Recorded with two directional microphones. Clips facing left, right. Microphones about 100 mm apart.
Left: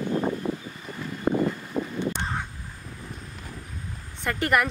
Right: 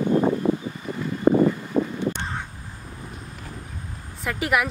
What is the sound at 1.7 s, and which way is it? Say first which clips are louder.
Crow: right 6 dB; 55° right (ahead or behind).